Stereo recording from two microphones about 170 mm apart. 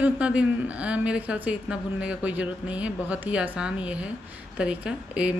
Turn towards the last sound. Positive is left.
turn(degrees=-5)  # may be behind; listen again after turning